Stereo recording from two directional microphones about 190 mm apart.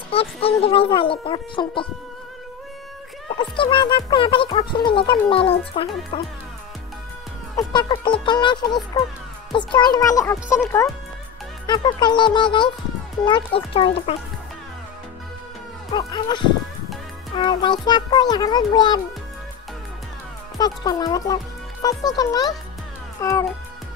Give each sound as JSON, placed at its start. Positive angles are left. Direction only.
{"t": 0.1, "sound": "speech", "side_deg": 30}
{"t": 3.3, "sound": "speech", "side_deg": 25}
{"t": 7.5, "sound": "speech", "side_deg": 25}
{"t": 11.6, "sound": "speech", "side_deg": 25}
{"t": 15.9, "sound": "speech", "side_deg": 20}
{"t": 20.5, "sound": "speech", "side_deg": 20}